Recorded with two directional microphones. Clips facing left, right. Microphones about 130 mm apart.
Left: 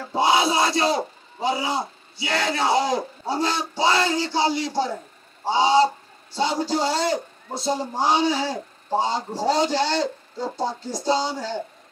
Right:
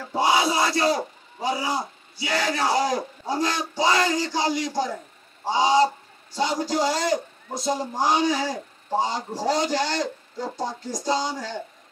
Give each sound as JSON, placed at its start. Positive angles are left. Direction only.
{"t": 0.0, "sound": "a man's voice", "side_deg": 25}
{"t": 5.4, "sound": "a sound", "side_deg": 30}
{"t": 6.3, "sound": "speech", "side_deg": 30}